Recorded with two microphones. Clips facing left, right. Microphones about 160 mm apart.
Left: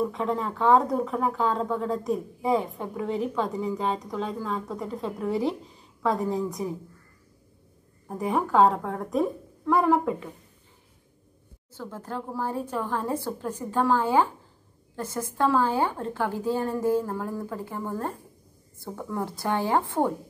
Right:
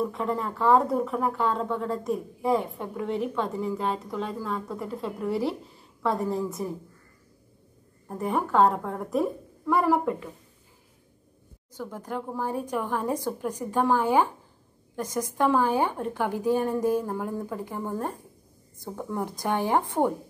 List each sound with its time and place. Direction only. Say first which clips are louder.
0.0 s speech: left 1 dB; centre (ahead or behind)
8.1 s speech: left 1 dB; centre (ahead or behind)
11.7 s a woman's voice: right 1 dB; 15° right (ahead or behind)